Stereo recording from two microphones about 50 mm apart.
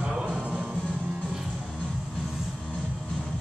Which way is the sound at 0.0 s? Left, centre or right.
Right.